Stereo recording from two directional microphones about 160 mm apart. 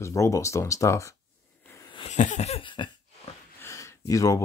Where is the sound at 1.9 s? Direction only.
45° left (ahead or behind).